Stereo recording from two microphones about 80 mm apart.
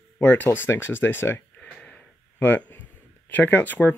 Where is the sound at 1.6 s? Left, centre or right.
Centre.